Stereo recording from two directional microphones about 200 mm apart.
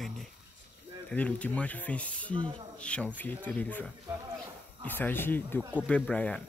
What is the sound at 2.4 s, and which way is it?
Speech, 25° right (ahead or behind).